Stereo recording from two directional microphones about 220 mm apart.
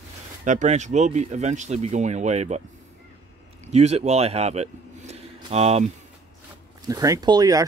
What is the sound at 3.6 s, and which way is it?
Speech, 30° right (ahead or behind).